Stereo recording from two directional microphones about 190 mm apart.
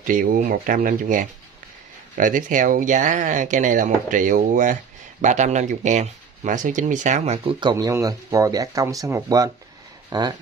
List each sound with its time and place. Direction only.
0.0 s speech: 45° right (ahead or behind)
7.6 s speech: 20° right (ahead or behind)